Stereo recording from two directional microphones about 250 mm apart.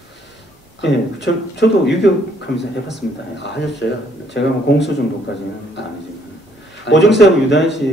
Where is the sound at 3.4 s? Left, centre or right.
Left.